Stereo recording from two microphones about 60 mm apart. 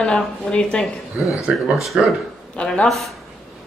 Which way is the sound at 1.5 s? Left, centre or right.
Centre.